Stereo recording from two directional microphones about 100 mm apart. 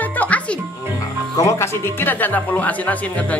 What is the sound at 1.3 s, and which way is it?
Speech, 30° left (ahead or behind).